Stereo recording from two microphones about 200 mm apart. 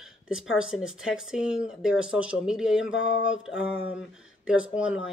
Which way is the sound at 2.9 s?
70° left (ahead or behind).